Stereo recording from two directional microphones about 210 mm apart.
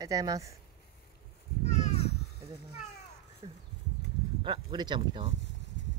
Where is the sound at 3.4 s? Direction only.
20° right (ahead or behind).